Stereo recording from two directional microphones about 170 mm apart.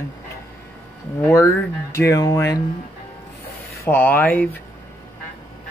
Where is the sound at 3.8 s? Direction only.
10° left (ahead or behind).